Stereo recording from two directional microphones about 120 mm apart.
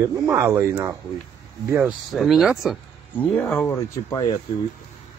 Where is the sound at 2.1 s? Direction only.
Centre (ahead or behind).